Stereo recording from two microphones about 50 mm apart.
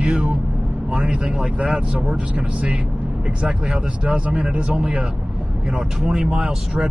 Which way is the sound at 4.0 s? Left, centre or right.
Right.